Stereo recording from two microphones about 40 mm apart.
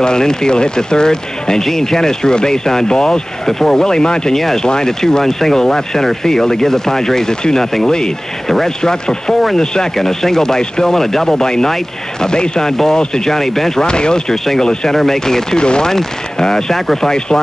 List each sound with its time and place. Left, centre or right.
0.0 s speech: centre
4.4 s speech: centre
13.8 s speech: left
14.3 s speech: centre